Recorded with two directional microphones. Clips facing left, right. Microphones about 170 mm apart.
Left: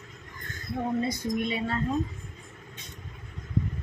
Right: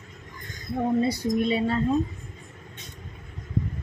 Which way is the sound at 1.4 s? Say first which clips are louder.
Right 6 dB; 30° right (ahead or behind).